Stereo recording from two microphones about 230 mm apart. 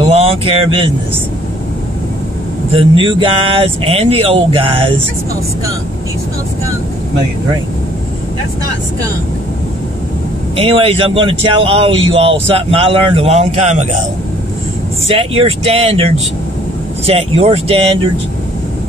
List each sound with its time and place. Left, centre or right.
0.0 s a sound: right
2.7 s speech: right
10.5 s speech: right
15.0 s speech: right